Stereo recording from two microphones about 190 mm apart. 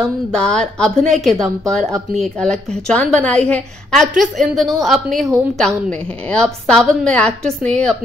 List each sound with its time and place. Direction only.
0.0 s a woman's voice: 5° left (ahead or behind)